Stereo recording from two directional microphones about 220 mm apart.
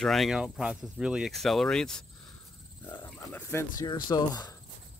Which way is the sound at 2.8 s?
20° left (ahead or behind).